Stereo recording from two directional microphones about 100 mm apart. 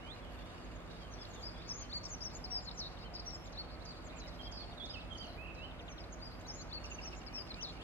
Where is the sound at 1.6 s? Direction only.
20° left (ahead or behind).